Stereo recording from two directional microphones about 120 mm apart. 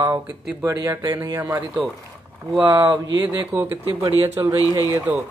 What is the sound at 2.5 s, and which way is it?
Speech, 30° right (ahead or behind).